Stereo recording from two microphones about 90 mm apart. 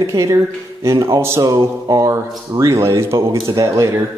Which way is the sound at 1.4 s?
40° right (ahead or behind).